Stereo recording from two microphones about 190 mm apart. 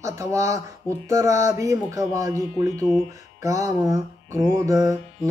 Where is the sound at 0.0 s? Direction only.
15° right (ahead or behind).